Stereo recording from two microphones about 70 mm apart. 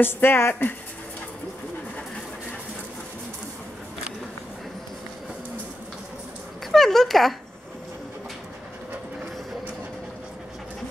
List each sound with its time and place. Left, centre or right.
0.0 s speech: left
6.7 s speech: centre